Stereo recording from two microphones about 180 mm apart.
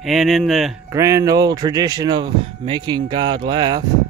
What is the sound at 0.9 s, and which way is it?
A man's voice, 15° right (ahead or behind).